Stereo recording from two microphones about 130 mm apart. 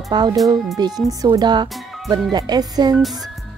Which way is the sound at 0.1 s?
35° right (ahead or behind).